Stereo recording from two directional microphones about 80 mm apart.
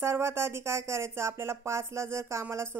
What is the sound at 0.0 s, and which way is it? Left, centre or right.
Speech, right.